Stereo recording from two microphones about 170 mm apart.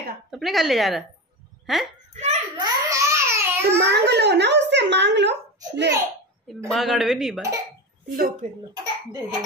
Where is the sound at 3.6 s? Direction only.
75° right (ahead or behind).